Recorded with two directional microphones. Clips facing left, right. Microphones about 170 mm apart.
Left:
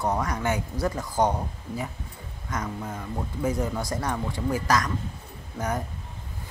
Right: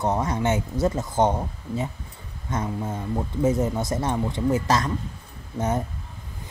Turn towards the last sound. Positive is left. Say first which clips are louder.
# right 4 dB
turn(degrees=-25)  # may be behind; listen again after turning